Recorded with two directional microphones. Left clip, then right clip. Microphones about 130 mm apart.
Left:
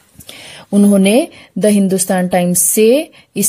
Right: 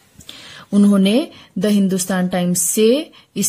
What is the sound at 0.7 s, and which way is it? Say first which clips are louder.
A woman's voice: left 5 dB; 40° left (ahead or behind).